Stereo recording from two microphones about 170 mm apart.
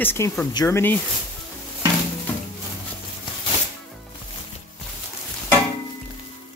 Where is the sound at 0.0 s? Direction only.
15° left (ahead or behind).